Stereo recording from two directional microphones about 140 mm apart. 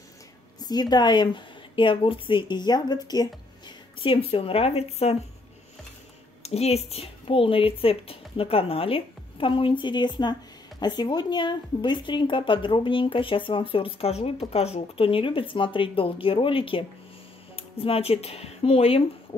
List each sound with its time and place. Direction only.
0.6 s a woman's voice: 30° left (ahead or behind)
3.6 s speech: 40° left (ahead or behind)
6.4 s a woman's voice: 45° left (ahead or behind)